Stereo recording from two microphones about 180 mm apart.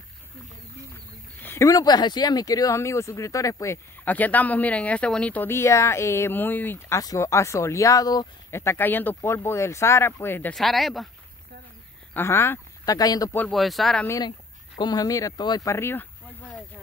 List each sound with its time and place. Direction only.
1.4 s speech: 15° left (ahead or behind)
12.1 s speech: 10° left (ahead or behind)
13.5 s speech: centre (ahead or behind)
14.0 s speech: 20° left (ahead or behind)